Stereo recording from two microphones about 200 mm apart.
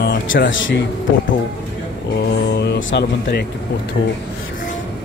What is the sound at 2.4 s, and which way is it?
Speech, 55° left (ahead or behind).